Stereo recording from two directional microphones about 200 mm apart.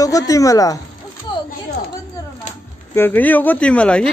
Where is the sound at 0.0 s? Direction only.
15° left (ahead or behind).